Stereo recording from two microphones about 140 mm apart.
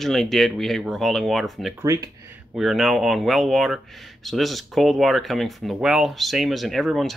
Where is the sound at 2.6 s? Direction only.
Centre (ahead or behind).